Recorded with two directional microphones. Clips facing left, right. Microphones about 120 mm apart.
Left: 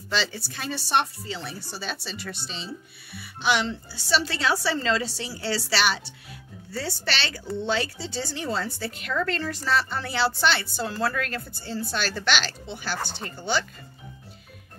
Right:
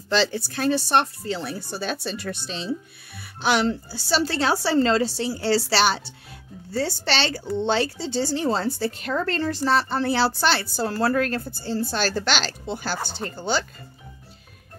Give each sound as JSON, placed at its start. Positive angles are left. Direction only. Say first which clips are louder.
{"t": 0.3, "sound": "a woman's voice", "louder": "right 10 dB", "side_deg": -55}